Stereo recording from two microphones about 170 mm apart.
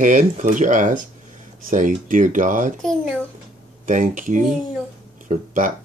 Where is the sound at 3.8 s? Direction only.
50° right (ahead or behind).